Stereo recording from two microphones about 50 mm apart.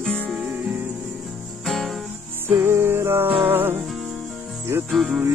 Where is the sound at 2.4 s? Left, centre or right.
Right.